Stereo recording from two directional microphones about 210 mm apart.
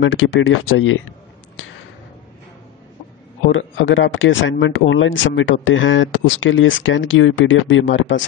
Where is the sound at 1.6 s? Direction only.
65° left (ahead or behind).